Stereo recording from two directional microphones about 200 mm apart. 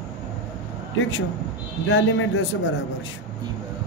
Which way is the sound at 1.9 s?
70° left (ahead or behind).